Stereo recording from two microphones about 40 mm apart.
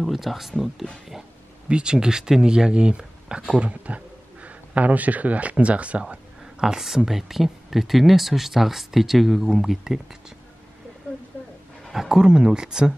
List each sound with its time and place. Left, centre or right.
0.0 s speech: centre
1.7 s speech: right
3.5 s speech: right
6.4 s speech: centre
11.9 s speech: centre